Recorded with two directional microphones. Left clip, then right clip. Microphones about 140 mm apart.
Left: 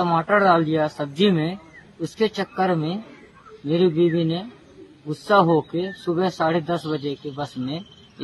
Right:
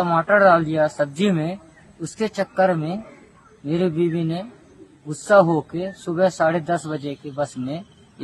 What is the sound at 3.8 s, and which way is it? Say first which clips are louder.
Speech: left 3 dB; 20° right (ahead or behind).